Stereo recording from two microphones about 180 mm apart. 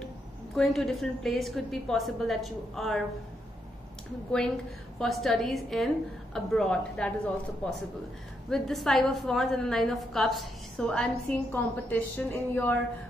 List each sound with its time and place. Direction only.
0.6 s a woman's voice: centre (ahead or behind)
4.9 s a woman's voice: centre (ahead or behind)
8.5 s a woman's voice: centre (ahead or behind)